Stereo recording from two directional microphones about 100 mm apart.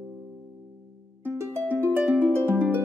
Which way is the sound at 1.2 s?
25° right (ahead or behind).